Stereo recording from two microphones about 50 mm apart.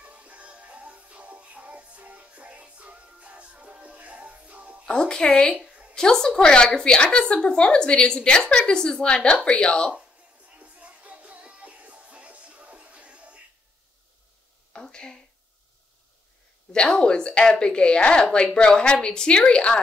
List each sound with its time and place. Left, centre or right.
0.0 s music: right
4.8 s a woman's voice: centre
10.5 s music: right
14.7 s a sound: centre
16.7 s a woman's voice: centre